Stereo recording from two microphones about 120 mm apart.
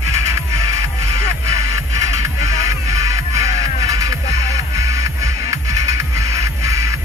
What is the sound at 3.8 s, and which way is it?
Music, 25° right (ahead or behind).